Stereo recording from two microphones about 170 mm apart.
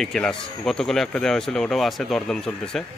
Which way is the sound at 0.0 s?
5° left (ahead or behind).